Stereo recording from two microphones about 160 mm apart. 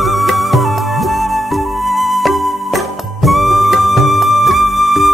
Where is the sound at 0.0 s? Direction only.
Centre (ahead or behind).